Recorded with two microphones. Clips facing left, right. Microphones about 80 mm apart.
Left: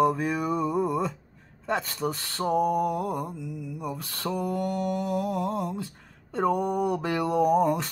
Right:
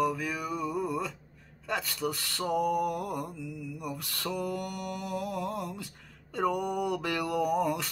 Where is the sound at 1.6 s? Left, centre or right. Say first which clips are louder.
Left 4 dB; left.